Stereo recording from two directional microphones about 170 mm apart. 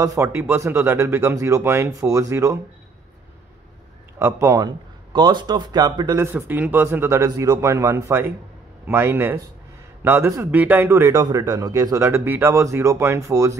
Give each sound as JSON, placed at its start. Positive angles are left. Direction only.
{"t": 0.0, "sound": "a man's voice", "side_deg": -20}
{"t": 4.2, "sound": "a man's voice", "side_deg": -15}
{"t": 6.1, "sound": "a man's voice", "side_deg": -15}